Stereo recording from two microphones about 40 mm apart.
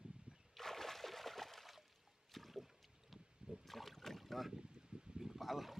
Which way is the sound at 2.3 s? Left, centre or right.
Centre.